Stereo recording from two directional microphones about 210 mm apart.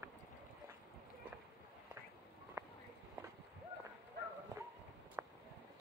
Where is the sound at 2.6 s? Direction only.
15° right (ahead or behind).